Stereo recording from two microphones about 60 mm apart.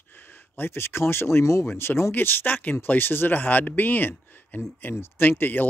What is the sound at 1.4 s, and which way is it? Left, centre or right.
Speech, left.